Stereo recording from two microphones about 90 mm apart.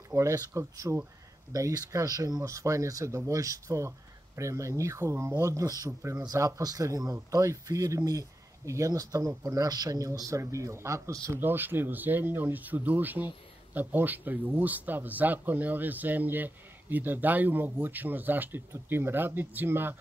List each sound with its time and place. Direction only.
0.1 s speech: 35° right (ahead or behind)
11.3 s speech: 20° right (ahead or behind)